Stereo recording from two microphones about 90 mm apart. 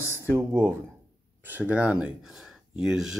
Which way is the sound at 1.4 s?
20° right (ahead or behind).